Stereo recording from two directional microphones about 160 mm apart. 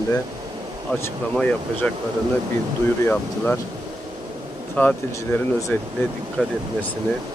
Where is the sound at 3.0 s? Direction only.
15° left (ahead or behind).